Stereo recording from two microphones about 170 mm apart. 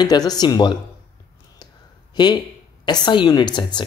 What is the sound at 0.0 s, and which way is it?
Speech, 25° left (ahead or behind).